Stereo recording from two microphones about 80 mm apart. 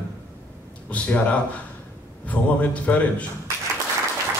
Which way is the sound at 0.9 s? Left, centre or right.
Centre.